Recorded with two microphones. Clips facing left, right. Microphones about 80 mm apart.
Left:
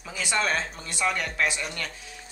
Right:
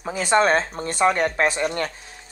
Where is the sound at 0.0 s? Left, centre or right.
Right.